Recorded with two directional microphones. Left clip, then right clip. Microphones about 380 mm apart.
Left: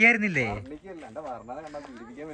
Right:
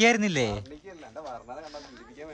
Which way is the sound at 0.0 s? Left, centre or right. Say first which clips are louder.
Left 2 dB; centre.